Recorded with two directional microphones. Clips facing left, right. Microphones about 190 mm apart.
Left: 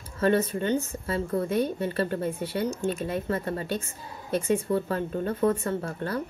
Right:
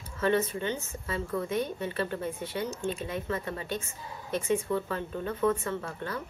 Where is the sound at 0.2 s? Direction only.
40° left (ahead or behind).